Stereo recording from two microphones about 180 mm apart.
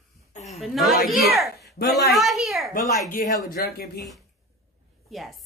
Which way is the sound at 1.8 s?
65° left (ahead or behind).